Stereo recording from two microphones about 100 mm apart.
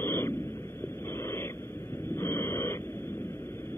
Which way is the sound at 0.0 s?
25° left (ahead or behind).